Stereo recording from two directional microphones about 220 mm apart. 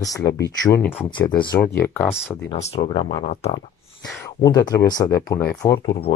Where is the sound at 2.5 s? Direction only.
30° left (ahead or behind).